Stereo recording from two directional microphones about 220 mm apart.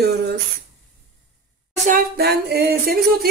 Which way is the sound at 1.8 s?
40° right (ahead or behind).